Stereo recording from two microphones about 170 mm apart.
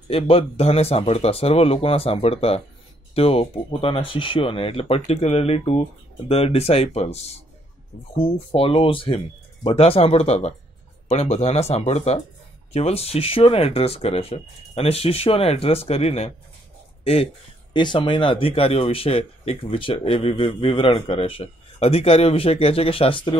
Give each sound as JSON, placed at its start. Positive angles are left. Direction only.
{"t": 0.1, "sound": "speech", "side_deg": 35}